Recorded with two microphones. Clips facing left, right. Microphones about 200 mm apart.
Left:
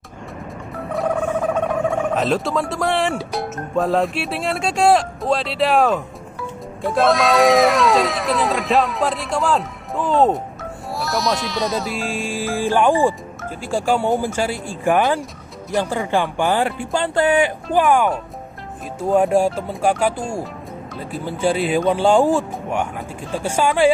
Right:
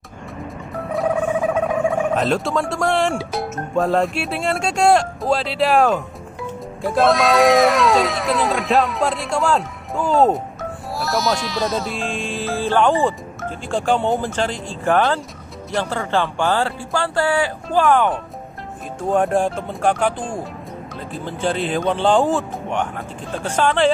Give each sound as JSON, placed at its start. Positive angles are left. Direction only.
{"t": 0.9, "sound": "speech", "side_deg": -5}
{"t": 18.9, "sound": "speech", "side_deg": 5}